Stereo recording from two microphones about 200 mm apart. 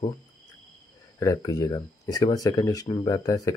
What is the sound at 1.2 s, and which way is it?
Speech, 15° left (ahead or behind).